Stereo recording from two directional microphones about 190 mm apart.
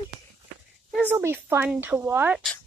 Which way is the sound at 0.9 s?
10° right (ahead or behind).